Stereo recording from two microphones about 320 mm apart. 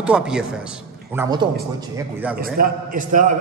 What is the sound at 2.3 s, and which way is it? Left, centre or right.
A man's voice, right.